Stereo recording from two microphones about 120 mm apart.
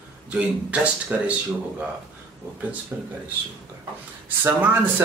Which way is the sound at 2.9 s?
10° right (ahead or behind).